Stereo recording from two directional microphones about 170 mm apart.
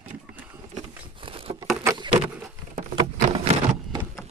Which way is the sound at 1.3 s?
30° right (ahead or behind).